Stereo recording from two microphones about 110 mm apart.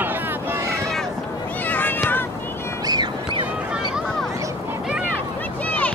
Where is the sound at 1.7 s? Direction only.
15° left (ahead or behind).